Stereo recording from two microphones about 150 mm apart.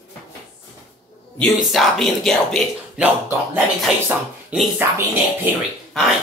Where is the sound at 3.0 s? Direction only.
10° right (ahead or behind).